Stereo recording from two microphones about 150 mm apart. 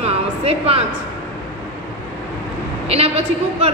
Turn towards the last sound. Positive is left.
turn(degrees=-45)  # may be behind; listen again after turning